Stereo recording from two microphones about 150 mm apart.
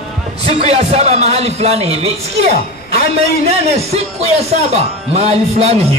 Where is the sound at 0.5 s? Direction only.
45° right (ahead or behind).